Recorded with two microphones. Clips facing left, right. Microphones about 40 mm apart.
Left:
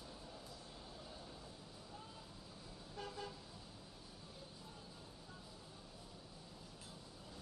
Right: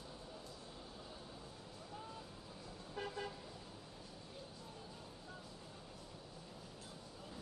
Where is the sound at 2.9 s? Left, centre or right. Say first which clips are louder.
Right 4 dB; right.